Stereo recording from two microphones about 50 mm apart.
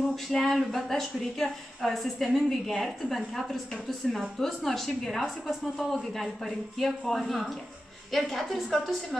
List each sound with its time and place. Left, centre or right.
0.1 s a woman's voice: centre